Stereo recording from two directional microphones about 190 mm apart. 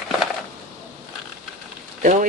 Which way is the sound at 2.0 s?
40° right (ahead or behind).